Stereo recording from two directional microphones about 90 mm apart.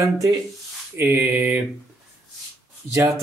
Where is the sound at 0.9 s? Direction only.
25° right (ahead or behind).